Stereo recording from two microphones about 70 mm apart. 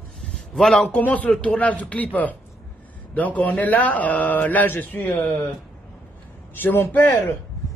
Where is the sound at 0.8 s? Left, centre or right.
Left.